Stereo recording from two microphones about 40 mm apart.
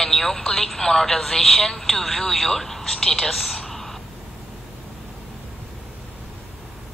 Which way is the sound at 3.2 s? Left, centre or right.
Centre.